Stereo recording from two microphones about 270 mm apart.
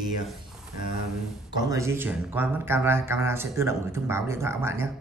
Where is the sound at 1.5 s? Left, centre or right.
Centre.